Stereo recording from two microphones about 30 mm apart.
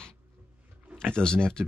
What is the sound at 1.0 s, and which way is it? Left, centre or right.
Speech, left.